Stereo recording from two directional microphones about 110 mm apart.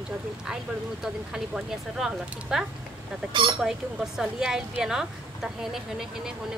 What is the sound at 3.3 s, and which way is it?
Speech, 45° right (ahead or behind).